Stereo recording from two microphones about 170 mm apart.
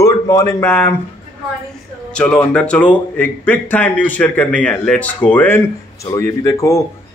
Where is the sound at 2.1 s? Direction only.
5° left (ahead or behind).